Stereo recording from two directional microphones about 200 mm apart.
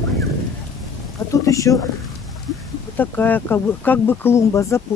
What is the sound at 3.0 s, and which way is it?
Speech, 10° left (ahead or behind).